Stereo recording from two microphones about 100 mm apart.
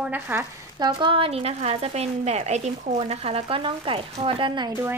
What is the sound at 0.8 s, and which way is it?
A woman's voice, 55° right (ahead or behind).